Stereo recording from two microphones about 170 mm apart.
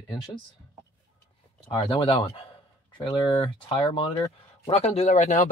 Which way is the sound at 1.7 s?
30° left (ahead or behind).